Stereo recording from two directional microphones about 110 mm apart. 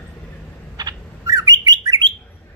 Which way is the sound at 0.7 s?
35° right (ahead or behind).